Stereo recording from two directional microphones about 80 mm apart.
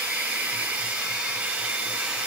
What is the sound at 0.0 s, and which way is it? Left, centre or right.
Hair dryer, centre.